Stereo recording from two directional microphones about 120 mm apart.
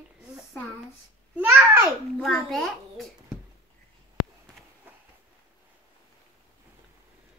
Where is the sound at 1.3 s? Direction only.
15° right (ahead or behind).